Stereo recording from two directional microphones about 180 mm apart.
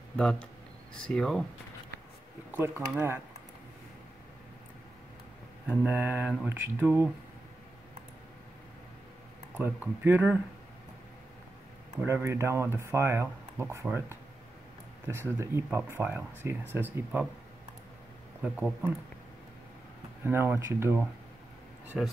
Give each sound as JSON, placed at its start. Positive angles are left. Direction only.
{"t": 0.2, "sound": "speech", "side_deg": 5}
{"t": 2.5, "sound": "speech", "side_deg": -10}
{"t": 5.9, "sound": "speech", "side_deg": -10}
{"t": 9.6, "sound": "speech", "side_deg": -10}
{"t": 12.0, "sound": "speech", "side_deg": -10}
{"t": 18.4, "sound": "speech", "side_deg": -5}
{"t": 20.2, "sound": "speech", "side_deg": -10}